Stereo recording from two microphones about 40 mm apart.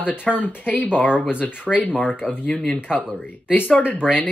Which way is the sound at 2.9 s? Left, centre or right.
Right.